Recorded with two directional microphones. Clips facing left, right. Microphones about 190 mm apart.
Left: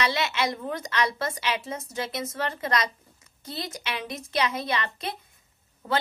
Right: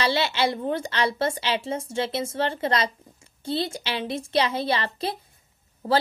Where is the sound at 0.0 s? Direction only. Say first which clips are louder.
Right 3 dB; 30° right (ahead or behind).